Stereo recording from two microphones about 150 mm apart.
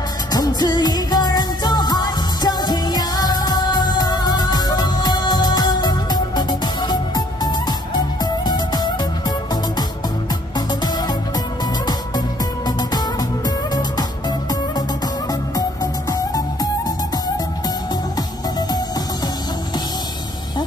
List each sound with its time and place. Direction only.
0.3 s music: 25° left (ahead or behind)
15.5 s music: 25° left (ahead or behind)